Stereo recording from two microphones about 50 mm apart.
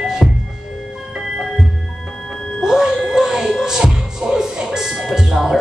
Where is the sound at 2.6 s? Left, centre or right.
Centre.